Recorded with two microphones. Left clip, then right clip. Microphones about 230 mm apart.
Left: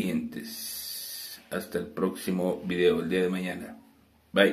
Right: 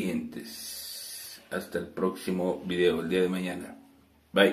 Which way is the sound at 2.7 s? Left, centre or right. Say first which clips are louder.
Left 1 dB; centre.